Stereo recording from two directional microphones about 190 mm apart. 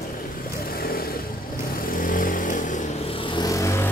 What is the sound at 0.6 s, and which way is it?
Vehicle, 50° left (ahead or behind).